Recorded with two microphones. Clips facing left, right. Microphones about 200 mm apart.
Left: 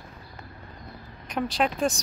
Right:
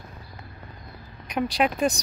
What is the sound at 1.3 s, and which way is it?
Speech, 5° right (ahead or behind).